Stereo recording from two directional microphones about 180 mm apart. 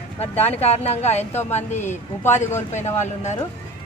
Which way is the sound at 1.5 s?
40° left (ahead or behind).